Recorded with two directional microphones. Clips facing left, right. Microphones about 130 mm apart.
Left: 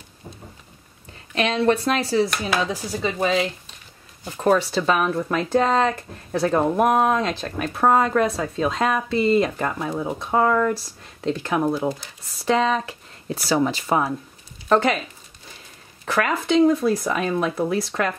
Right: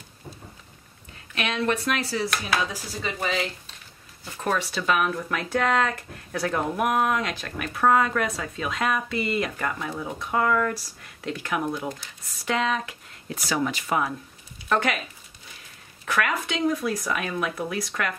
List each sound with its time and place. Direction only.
1.3 s speech: 35° left (ahead or behind)
4.4 s speech: 35° left (ahead or behind)
16.1 s speech: 30° left (ahead or behind)